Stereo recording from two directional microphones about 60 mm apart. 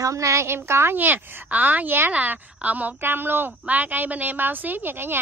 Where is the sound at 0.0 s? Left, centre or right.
Right.